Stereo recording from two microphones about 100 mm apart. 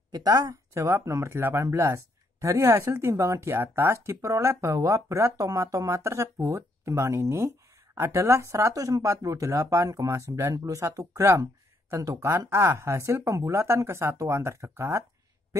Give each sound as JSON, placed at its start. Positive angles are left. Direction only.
{"t": 0.1, "sound": "speech", "side_deg": -40}
{"t": 0.7, "sound": "speech", "side_deg": -25}